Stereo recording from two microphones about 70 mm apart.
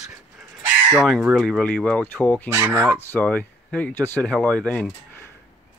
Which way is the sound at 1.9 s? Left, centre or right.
Left.